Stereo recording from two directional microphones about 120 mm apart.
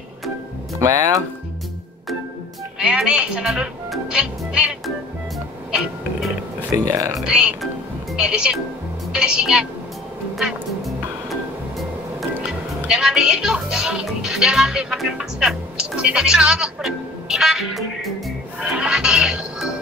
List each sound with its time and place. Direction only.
0.7 s speech: 25° right (ahead or behind)
2.8 s speech: 5° right (ahead or behind)
6.7 s speech: 30° right (ahead or behind)
7.2 s speech: 5° right (ahead or behind)
10.3 s music: centre (ahead or behind)
12.4 s speech: 10° right (ahead or behind)
18.6 s music: 5° right (ahead or behind)